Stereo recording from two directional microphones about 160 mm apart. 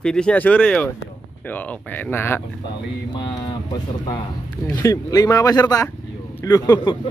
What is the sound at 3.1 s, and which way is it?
Speech, 25° left (ahead or behind).